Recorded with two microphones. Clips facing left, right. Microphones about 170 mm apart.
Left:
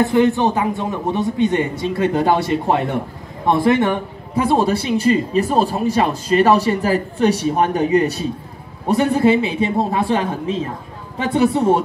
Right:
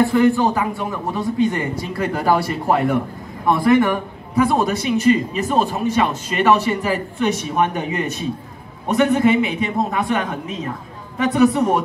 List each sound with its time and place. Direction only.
0.0 s a man's voice: 20° left (ahead or behind)